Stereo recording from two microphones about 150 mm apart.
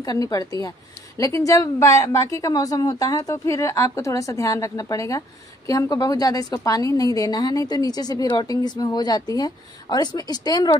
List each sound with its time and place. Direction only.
0.0 s a woman's voice: 25° left (ahead or behind)